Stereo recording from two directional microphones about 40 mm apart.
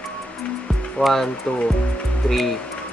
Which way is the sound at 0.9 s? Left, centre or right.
Centre.